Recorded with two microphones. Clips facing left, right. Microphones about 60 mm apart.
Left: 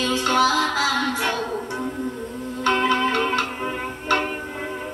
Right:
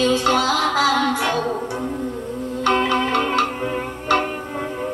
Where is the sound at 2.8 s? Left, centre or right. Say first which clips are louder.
Right 1 dB; left.